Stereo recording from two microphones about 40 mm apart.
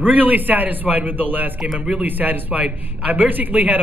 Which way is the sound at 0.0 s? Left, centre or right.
Right.